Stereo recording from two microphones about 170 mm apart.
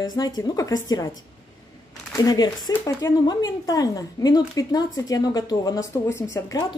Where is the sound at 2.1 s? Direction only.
20° left (ahead or behind).